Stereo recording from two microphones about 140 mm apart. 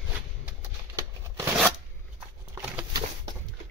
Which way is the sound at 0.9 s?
20° right (ahead or behind).